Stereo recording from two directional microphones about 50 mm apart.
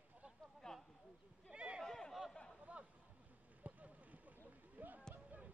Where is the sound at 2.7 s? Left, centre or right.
Right.